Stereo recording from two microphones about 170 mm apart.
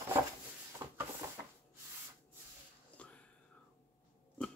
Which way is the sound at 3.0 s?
5° left (ahead or behind).